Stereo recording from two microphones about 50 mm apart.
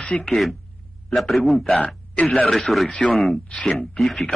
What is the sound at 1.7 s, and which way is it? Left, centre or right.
Speech, left.